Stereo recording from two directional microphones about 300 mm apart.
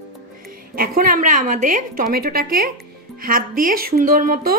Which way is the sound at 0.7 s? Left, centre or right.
Right.